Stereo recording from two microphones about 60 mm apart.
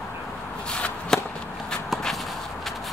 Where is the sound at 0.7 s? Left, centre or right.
Centre.